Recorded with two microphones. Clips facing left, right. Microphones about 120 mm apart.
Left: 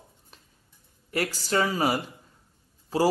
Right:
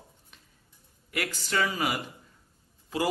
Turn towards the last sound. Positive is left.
turn(degrees=35)  # may be behind; listen again after turning